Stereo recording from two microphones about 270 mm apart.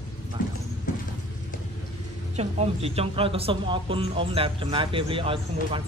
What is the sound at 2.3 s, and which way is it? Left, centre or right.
Speech, right.